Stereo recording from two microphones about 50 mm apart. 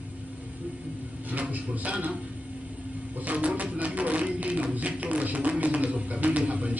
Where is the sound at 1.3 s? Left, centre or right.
Right.